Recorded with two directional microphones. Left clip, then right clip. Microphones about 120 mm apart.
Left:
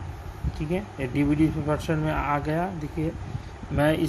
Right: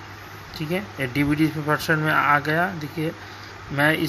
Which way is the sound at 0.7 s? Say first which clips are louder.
Right 3 dB; 10° left (ahead or behind).